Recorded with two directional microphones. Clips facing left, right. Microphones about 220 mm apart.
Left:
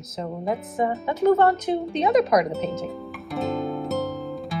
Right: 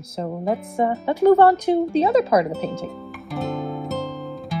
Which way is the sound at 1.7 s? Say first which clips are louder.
Right 6 dB; 50° right (ahead or behind).